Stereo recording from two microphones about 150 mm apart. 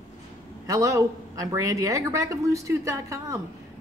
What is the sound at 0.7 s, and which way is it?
Speech, 20° right (ahead or behind).